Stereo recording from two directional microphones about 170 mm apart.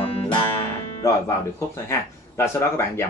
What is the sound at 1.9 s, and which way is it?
Speech, 15° left (ahead or behind).